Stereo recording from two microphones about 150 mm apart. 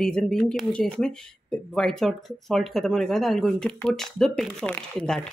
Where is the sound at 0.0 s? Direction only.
5° left (ahead or behind).